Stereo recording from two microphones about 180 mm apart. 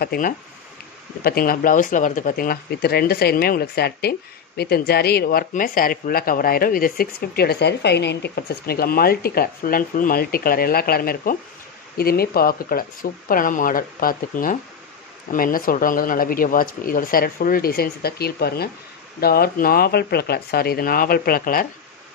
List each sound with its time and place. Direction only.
0.0 s speech: 60° left (ahead or behind)